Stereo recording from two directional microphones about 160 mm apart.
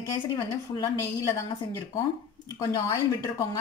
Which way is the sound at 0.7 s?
20° left (ahead or behind).